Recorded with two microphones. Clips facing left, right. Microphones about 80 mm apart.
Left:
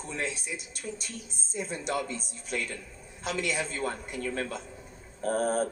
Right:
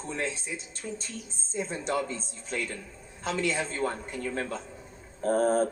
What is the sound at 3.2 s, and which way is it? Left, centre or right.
A man's voice, right.